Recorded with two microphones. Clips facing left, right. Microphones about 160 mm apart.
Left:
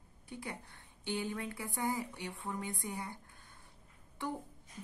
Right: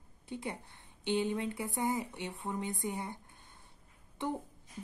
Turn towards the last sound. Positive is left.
turn(degrees=-20)  # may be behind; listen again after turning